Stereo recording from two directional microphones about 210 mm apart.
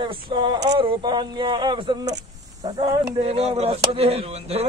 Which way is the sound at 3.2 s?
30° right (ahead or behind).